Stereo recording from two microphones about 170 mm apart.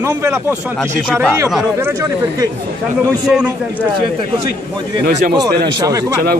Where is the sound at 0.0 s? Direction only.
15° right (ahead or behind).